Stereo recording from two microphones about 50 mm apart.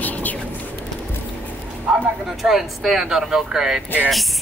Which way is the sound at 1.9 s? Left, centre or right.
Centre.